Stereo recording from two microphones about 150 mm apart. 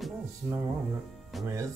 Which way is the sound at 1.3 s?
Centre (ahead or behind).